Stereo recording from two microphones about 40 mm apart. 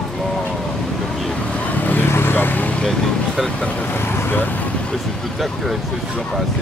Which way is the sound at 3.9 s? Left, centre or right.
Left.